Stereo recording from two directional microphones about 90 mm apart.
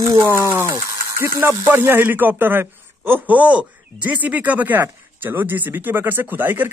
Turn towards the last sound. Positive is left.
turn(degrees=-25)  # may be behind; listen again after turning